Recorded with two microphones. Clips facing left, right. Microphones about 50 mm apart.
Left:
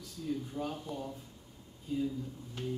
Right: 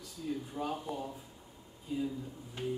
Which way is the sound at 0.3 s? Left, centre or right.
Centre.